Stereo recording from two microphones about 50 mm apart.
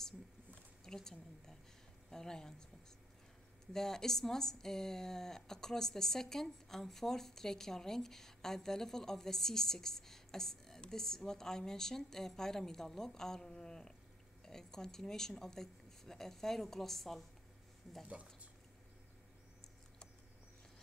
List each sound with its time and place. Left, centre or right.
0.8 s speech: centre
3.7 s speech: centre
18.0 s speech: right